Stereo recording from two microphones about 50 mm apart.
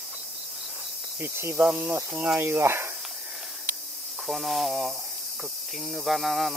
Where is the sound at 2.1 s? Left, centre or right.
Right.